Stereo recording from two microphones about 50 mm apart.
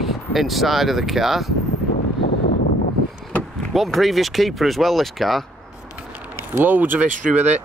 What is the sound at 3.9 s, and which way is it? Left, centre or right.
Speech, centre.